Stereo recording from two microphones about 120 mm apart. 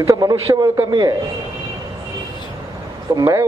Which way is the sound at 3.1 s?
30° right (ahead or behind).